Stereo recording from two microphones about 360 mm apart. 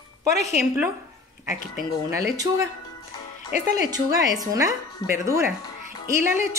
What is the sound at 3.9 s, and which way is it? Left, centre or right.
Speech, centre.